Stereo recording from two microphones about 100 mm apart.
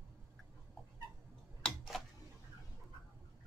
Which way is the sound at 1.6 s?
Centre (ahead or behind).